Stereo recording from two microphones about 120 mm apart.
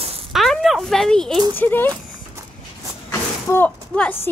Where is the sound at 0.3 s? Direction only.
Centre (ahead or behind).